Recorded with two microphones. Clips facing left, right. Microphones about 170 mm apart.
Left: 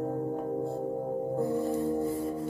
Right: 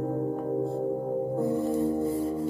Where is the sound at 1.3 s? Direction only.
20° right (ahead or behind).